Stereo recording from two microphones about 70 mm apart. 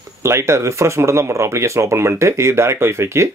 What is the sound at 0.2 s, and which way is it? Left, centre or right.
Speech, right.